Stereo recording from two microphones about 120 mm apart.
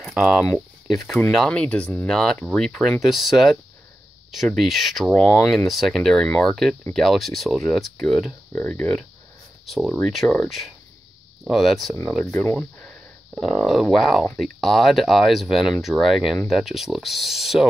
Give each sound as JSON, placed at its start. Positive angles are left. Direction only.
{"t": 0.0, "sound": "speech", "side_deg": 0}
{"t": 8.5, "sound": "speech", "side_deg": 10}
{"t": 9.7, "sound": "speech", "side_deg": 0}
{"t": 12.3, "sound": "speech", "side_deg": 15}
{"t": 13.3, "sound": "speech", "side_deg": 0}